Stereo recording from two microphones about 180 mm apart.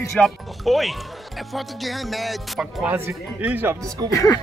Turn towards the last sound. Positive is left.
turn(degrees=20)  # may be behind; listen again after turning